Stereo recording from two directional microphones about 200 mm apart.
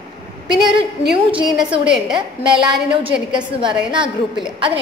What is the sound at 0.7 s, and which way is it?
A woman's voice, 25° right (ahead or behind).